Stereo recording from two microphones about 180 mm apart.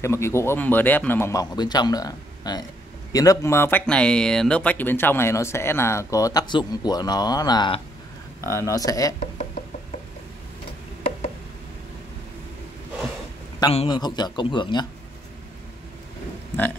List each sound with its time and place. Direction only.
0.0 s speech: 15° left (ahead or behind)
13.6 s a man's voice: 30° left (ahead or behind)